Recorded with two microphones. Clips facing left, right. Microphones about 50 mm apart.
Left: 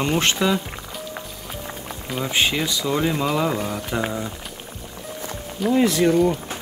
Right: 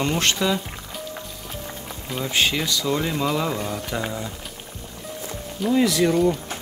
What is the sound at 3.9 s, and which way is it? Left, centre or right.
Speech, centre.